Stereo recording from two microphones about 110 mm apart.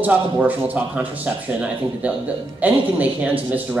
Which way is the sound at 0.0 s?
15° right (ahead or behind).